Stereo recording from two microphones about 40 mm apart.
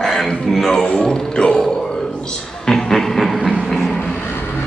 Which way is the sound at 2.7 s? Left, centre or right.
Centre.